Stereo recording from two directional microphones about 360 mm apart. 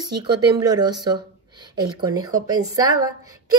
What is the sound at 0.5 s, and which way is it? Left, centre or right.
Speech, centre.